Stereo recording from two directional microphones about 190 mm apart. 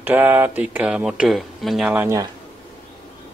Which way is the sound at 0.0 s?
10° right (ahead or behind).